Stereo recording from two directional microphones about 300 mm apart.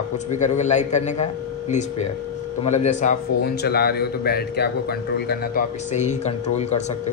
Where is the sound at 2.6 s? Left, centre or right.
Left.